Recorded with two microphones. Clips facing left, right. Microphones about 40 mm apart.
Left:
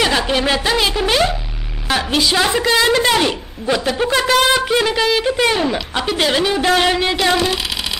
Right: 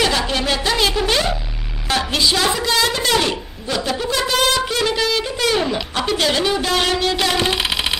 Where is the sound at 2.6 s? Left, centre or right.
Left.